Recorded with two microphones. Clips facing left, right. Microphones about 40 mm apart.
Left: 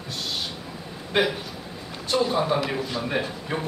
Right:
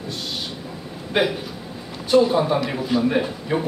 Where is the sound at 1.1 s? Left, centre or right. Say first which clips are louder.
Right 2 dB; centre.